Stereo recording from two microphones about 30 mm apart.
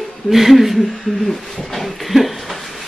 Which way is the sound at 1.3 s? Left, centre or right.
Centre.